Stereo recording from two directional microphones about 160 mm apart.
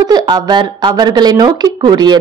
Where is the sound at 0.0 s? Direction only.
25° right (ahead or behind).